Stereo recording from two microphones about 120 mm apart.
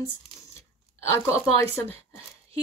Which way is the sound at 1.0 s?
20° left (ahead or behind).